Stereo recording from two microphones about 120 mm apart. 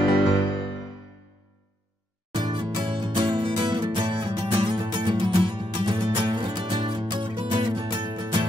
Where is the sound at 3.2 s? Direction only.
40° right (ahead or behind).